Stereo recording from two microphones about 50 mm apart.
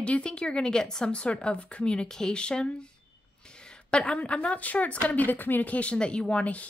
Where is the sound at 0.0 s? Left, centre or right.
Left.